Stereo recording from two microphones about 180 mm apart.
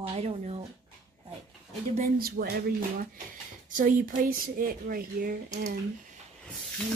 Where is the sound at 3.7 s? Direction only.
50° right (ahead or behind).